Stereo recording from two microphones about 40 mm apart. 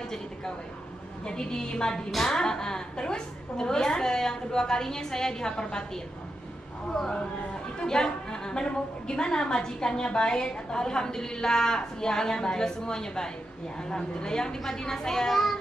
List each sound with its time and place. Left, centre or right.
1.2 s a woman's voice: centre
6.9 s a woman's voice: centre